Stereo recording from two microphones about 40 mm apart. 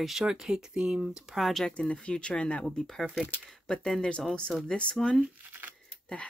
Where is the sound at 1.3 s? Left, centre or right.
Centre.